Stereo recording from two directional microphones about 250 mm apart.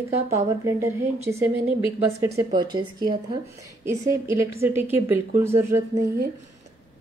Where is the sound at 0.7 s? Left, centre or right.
Centre.